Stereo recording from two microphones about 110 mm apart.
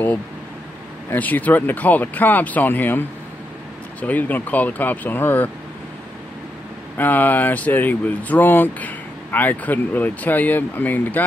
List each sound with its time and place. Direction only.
1.1 s speech: 15° left (ahead or behind)
7.0 s speech: 15° left (ahead or behind)